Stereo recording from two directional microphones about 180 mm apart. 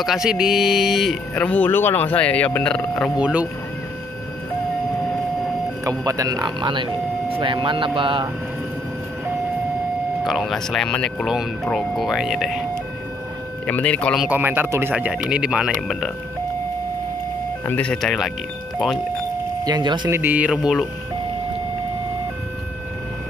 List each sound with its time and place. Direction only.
0.0 s speech: centre (ahead or behind)
3.2 s speech: 5° right (ahead or behind)
5.9 s speech: 20° right (ahead or behind)
10.2 s speech: centre (ahead or behind)
13.7 s speech: 10° left (ahead or behind)
14.2 s speech: 10° right (ahead or behind)
17.6 s speech: 5° left (ahead or behind)
19.6 s speech: 25° right (ahead or behind)
20.1 s speech: 10° right (ahead or behind)